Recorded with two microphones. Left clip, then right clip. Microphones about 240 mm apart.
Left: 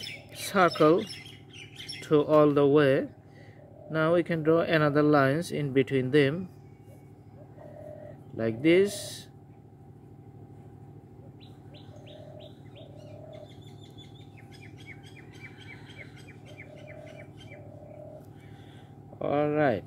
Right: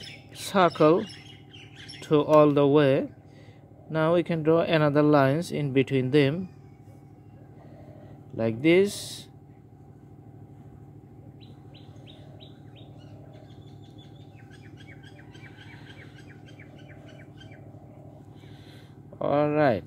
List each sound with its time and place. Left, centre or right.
0.4 s speech: centre
8.4 s speech: centre
19.1 s speech: right